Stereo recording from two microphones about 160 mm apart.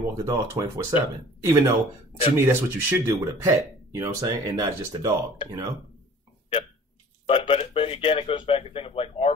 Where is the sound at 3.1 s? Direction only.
20° right (ahead or behind).